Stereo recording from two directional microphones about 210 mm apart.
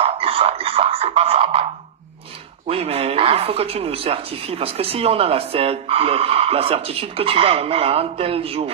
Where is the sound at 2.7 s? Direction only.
30° right (ahead or behind).